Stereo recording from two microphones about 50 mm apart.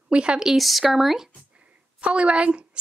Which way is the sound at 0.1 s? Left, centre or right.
Centre.